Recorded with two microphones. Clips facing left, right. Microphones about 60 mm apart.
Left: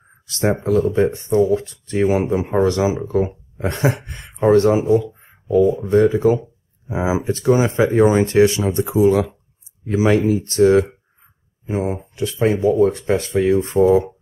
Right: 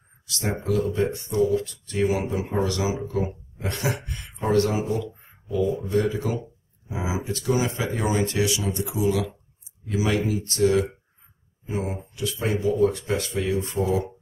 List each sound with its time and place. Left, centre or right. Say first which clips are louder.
0.3 s speech: left 8 dB; left